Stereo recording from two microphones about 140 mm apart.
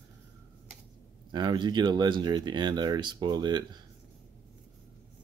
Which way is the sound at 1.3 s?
30° right (ahead or behind).